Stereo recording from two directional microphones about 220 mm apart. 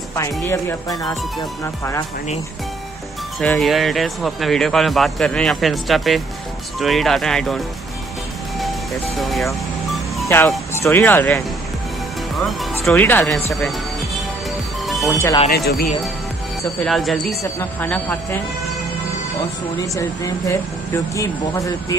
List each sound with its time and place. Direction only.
0.1 s speech: 10° left (ahead or behind)
3.3 s speech: centre (ahead or behind)
8.5 s music: centre (ahead or behind)
10.2 s speech: 10° left (ahead or behind)
13.6 s music: centre (ahead or behind)
15.1 s speech: 15° left (ahead or behind)
16.8 s speech: centre (ahead or behind)
19.8 s speech: 15° left (ahead or behind)